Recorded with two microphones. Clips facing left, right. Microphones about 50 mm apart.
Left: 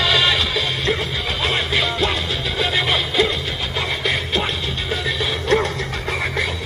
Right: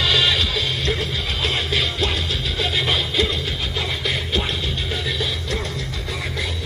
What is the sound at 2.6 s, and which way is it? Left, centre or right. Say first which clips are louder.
Music: left 2 dB; centre.